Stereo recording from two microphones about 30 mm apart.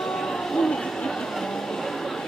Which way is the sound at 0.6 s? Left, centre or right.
Left.